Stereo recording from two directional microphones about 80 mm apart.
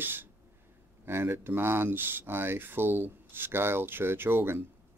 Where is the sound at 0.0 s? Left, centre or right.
Right.